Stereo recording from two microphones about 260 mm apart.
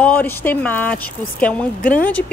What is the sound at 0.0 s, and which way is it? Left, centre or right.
A woman's voice, centre.